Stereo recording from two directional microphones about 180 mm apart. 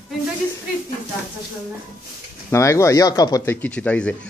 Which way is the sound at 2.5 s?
15° left (ahead or behind).